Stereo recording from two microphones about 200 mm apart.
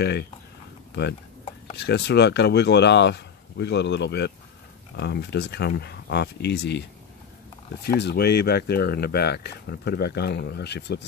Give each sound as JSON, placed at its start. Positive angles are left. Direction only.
{"t": 1.8, "sound": "speech", "side_deg": 55}